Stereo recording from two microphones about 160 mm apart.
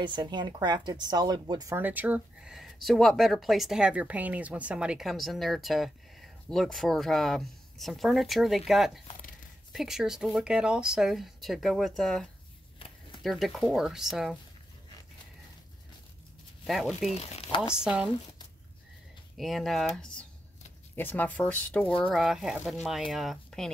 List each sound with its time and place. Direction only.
0.0 s speech: 30° right (ahead or behind)
1.8 s speech: 10° right (ahead or behind)
16.6 s speech: centre (ahead or behind)
17.1 s speech: 40° left (ahead or behind)
17.8 s speech: 5° right (ahead or behind)
19.3 s speech: centre (ahead or behind)